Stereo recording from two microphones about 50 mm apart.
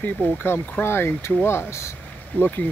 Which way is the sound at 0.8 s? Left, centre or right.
Left.